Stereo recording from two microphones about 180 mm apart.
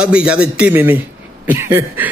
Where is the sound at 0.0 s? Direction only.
5° right (ahead or behind).